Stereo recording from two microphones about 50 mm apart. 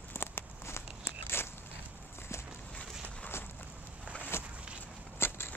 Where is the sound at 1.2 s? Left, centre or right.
Left.